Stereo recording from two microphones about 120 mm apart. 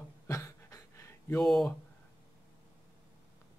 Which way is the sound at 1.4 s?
Centre (ahead or behind).